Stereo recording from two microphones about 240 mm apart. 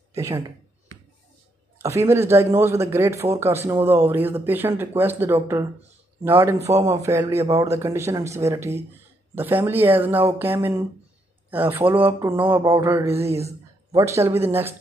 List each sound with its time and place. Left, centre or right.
0.1 s speech: centre
1.8 s speech: centre
13.1 s speech: right
13.9 s speech: centre